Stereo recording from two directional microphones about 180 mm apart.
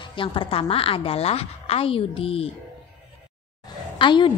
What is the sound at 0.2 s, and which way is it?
A woman's voice, 30° left (ahead or behind).